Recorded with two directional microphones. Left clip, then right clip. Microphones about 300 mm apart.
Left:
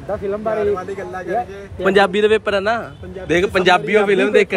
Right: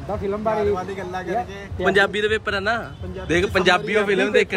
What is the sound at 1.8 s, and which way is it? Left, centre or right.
A man's voice, centre.